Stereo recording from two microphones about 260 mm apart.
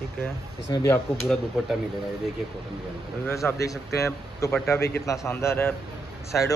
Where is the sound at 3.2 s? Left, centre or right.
Centre.